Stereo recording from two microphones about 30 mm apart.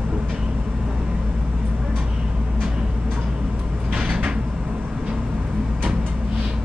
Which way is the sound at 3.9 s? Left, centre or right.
Right.